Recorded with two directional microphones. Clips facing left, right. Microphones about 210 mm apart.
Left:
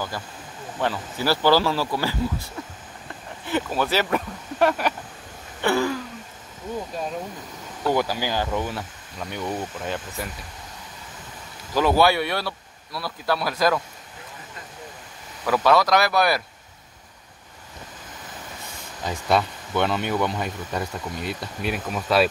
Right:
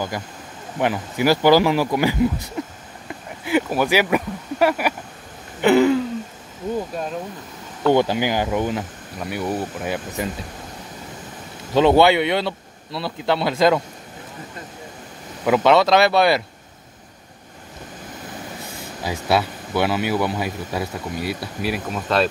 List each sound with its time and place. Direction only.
0.7 s speech: 15° right (ahead or behind)
5.6 s a sound: 20° right (ahead or behind)
7.9 s speech: 25° right (ahead or behind)
11.7 s speech: 25° right (ahead or behind)
15.4 s speech: 20° right (ahead or behind)
19.0 s speech: 5° right (ahead or behind)